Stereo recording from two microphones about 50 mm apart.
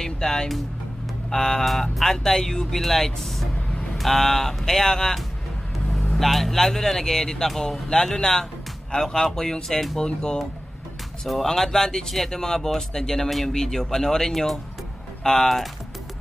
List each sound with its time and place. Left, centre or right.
0.0 s music: centre
1.3 s speech: centre
3.5 s vehicle: left
4.0 s speech: centre
11.4 s speech: centre